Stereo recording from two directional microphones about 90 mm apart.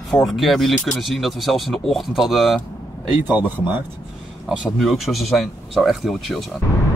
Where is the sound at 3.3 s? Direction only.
25° right (ahead or behind).